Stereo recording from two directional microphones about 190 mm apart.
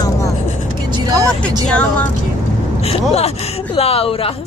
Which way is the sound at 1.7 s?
5° left (ahead or behind).